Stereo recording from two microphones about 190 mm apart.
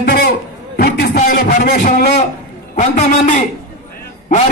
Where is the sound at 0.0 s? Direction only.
55° left (ahead or behind).